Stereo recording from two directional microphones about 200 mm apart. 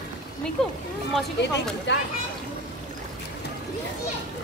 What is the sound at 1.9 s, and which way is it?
Speech, 60° left (ahead or behind).